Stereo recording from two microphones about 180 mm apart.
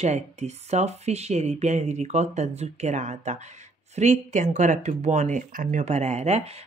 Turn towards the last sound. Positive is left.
turn(degrees=-35)  # may be behind; listen again after turning